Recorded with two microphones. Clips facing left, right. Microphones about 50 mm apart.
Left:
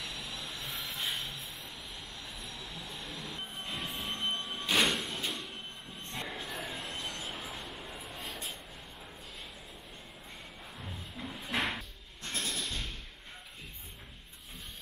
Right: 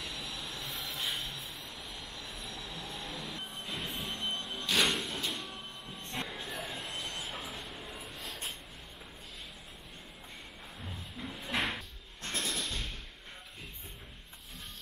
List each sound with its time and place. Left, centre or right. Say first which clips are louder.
0.0 s train: even; centre
2.2 s vehicle: right 1 dB; centre
3.6 s train: left 1 dB; centre
4.5 s music: left 1 dB; centre
4.8 s a sound: even; centre
7.2 s train: even; centre
10.8 s a sound: even; centre